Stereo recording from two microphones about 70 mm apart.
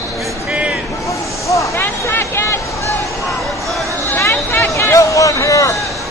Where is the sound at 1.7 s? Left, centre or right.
Left.